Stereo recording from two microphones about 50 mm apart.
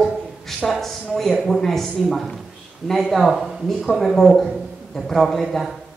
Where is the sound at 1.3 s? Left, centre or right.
Centre.